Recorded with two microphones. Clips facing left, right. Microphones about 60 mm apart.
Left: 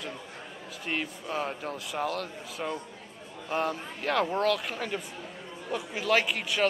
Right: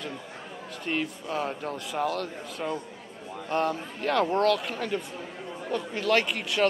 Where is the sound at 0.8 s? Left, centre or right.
Centre.